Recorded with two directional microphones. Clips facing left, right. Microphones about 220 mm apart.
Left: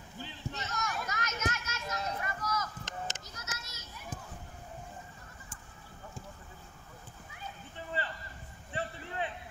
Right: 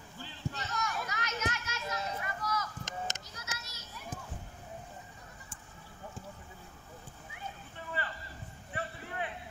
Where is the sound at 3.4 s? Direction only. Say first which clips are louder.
Even; 45° left (ahead or behind).